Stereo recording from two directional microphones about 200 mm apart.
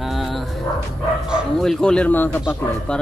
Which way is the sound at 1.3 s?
Centre (ahead or behind).